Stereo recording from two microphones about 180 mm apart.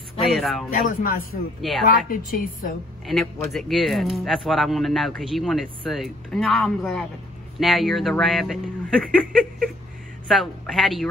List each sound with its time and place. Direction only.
0.3 s speech: centre (ahead or behind)
0.7 s speech: 55° left (ahead or behind)
1.6 s speech: centre (ahead or behind)
2.0 s speech: 50° left (ahead or behind)
3.1 s speech: centre (ahead or behind)